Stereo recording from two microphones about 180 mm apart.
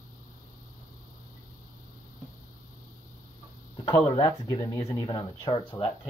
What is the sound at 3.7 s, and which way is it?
Speech, 25° left (ahead or behind).